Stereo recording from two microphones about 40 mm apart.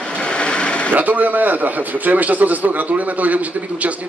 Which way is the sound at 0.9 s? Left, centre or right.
Right.